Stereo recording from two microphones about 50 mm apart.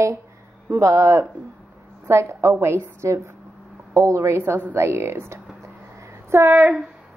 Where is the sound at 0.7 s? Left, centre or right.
Right.